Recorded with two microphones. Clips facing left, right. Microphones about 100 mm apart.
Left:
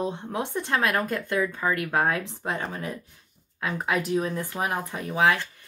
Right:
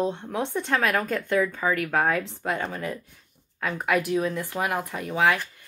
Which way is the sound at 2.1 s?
15° left (ahead or behind).